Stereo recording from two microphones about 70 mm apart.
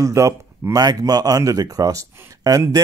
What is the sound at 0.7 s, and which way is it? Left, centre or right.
Speech, right.